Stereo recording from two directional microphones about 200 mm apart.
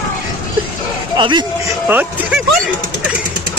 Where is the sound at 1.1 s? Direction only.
25° right (ahead or behind).